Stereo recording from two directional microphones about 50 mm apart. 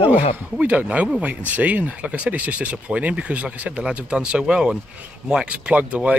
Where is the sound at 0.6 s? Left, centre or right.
Right.